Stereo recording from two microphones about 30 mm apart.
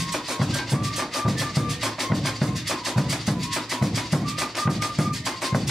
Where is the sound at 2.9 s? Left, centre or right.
Centre.